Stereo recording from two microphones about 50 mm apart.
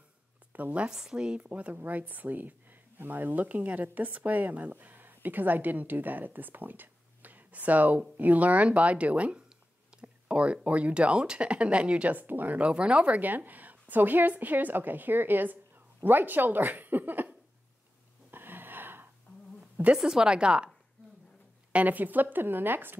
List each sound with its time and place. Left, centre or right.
0.5 s a woman's voice: right
0.8 s a woman's voice: centre
12.2 s speech: right
13.2 s a woman's voice: right
18.3 s gasp: right
20.0 s speech: centre
21.7 s a woman's voice: right